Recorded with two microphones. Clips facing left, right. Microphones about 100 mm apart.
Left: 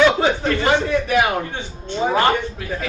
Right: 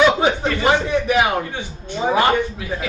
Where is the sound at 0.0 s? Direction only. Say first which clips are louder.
Even; 15° right (ahead or behind).